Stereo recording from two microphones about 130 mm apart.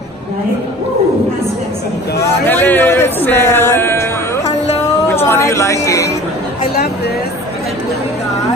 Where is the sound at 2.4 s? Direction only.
15° left (ahead or behind).